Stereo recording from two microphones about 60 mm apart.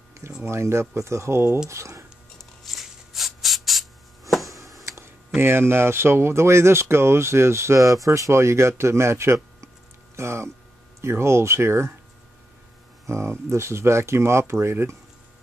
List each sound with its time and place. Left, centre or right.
0.4 s speech: right
2.3 s a sound: centre
5.4 s speech: right
13.0 s speech: right